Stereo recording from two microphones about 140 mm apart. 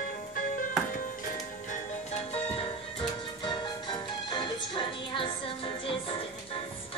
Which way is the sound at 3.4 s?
35° left (ahead or behind).